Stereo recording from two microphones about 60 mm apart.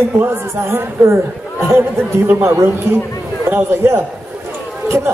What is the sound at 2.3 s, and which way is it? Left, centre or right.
Speech, right.